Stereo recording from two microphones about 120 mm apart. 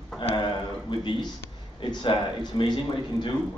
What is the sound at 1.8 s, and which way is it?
Speech, 40° left (ahead or behind).